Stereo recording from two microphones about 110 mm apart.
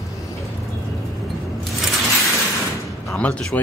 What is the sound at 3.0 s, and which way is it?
Speech, 10° left (ahead or behind).